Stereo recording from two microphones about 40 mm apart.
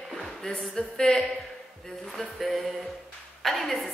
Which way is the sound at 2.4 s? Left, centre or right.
Centre.